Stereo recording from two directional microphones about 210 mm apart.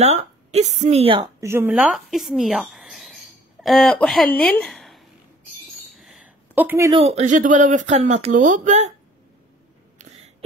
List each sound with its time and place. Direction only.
0.0 s a woman's voice: 30° right (ahead or behind)
1.4 s a woman's voice: 10° right (ahead or behind)
5.9 s a sound: centre (ahead or behind)
6.9 s speech: 30° right (ahead or behind)